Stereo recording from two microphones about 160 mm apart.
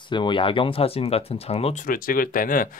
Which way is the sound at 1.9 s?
60° left (ahead or behind).